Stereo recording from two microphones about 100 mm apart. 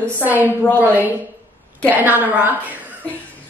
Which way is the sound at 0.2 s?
15° right (ahead or behind).